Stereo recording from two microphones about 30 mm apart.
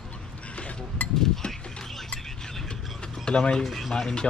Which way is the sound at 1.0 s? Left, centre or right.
Left.